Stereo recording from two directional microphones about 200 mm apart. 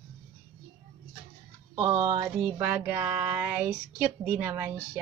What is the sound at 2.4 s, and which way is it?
Speech, 10° right (ahead or behind).